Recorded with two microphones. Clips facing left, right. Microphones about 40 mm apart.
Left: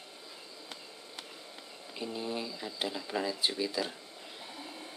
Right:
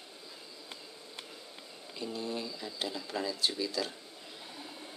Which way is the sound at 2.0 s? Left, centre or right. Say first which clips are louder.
Left 1 dB; centre.